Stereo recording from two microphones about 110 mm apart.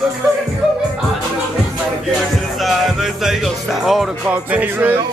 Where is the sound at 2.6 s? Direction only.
Centre (ahead or behind).